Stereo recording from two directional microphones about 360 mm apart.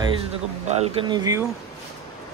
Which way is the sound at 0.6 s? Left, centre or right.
Centre.